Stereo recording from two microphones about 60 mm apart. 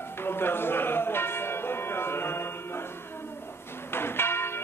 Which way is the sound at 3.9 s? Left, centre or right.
Left.